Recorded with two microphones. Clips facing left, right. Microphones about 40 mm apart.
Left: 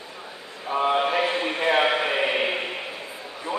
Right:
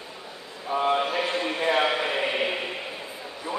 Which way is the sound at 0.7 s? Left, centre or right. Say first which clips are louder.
Left 2 dB; centre.